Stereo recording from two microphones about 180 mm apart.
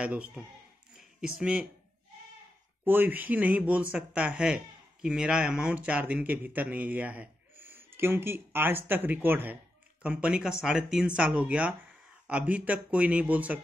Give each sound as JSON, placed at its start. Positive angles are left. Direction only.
{"t": 0.0, "sound": "speech", "side_deg": -5}
{"t": 2.8, "sound": "speech", "side_deg": -10}